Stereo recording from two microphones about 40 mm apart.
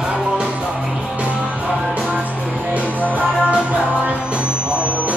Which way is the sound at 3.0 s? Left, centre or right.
Right.